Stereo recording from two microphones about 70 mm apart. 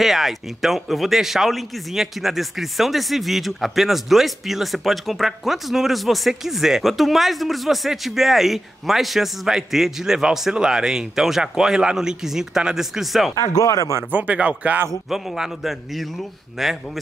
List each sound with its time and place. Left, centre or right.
0.0 s a man's voice: centre
13.4 s speech: left
14.1 s speech: right
14.9 s a man's voice: centre